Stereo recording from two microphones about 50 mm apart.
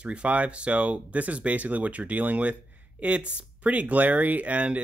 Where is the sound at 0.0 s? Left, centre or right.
Right.